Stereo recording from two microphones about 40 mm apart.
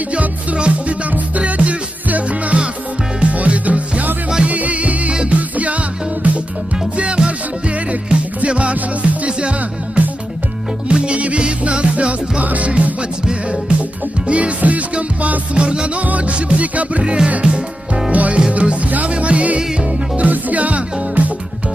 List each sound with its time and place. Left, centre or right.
0.1 s music: right
15.5 s music: right
16.0 s music: right
17.0 s music: right
18.1 s music: right